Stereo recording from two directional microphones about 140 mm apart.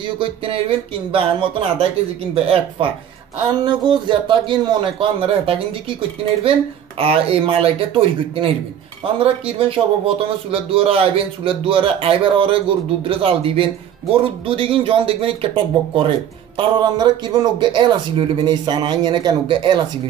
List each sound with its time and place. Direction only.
0.0 s a man's voice: 40° right (ahead or behind)
7.0 s a man's voice: 40° right (ahead or behind)